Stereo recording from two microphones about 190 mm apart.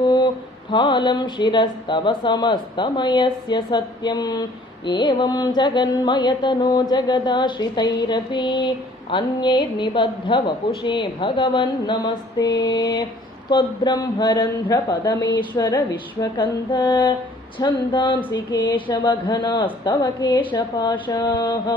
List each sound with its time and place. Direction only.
0.1 s speech: 25° left (ahead or behind)